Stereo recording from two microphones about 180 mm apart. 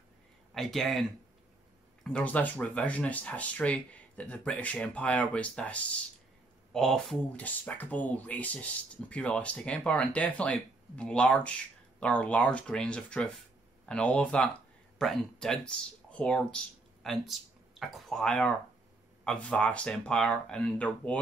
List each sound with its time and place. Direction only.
0.6 s speech: centre (ahead or behind)
2.0 s speech: 10° left (ahead or behind)